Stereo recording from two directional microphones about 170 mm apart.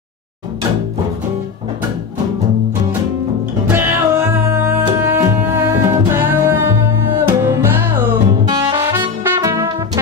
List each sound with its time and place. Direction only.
3.6 s music: 10° right (ahead or behind)
8.5 s brass instrument: 25° right (ahead or behind)
9.4 s music: 20° right (ahead or behind)